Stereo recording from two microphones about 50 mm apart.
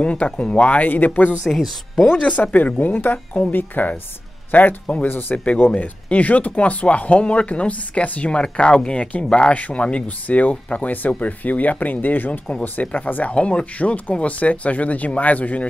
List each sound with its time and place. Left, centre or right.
0.0 s speech: left
1.4 s speech: centre
2.1 s a man's voice: left
5.3 s speech: left